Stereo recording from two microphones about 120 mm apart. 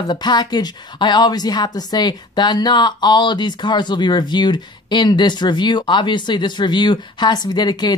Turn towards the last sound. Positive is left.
turn(degrees=35)  # may be behind; listen again after turning